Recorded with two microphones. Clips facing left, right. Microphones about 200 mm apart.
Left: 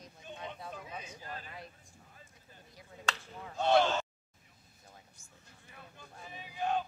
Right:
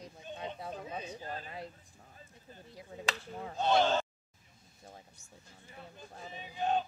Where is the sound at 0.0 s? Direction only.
25° right (ahead or behind).